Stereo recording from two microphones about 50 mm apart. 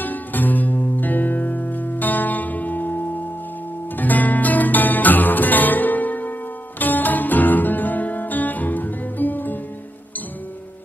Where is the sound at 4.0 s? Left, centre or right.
Left.